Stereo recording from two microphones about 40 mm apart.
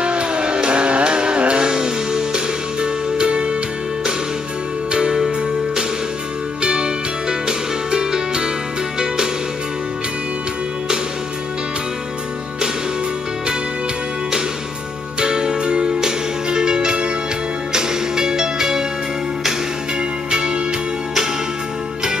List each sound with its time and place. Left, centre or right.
0.0 s music: right
4.9 s music: centre
6.6 s music: right
15.1 s music: centre
20.2 s music: right